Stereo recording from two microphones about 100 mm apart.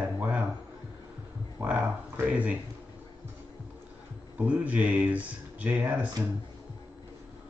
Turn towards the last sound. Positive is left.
turn(degrees=-15)  # may be behind; listen again after turning